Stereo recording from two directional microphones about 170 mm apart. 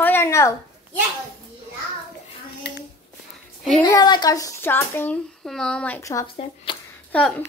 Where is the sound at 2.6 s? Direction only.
80° left.